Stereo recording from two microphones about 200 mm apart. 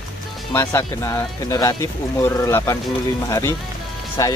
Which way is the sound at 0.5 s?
15° left (ahead or behind).